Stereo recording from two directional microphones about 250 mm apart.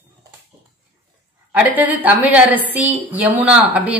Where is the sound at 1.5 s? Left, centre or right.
Centre.